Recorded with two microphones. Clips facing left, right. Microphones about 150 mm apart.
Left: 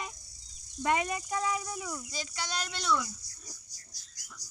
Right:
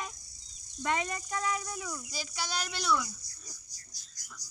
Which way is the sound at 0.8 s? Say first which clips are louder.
Left 3 dB; 10° left (ahead or behind).